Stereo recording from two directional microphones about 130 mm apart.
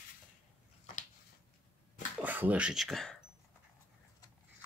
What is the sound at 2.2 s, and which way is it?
Speech, 15° right (ahead or behind).